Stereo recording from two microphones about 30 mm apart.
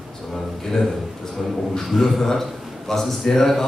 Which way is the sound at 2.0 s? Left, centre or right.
Centre.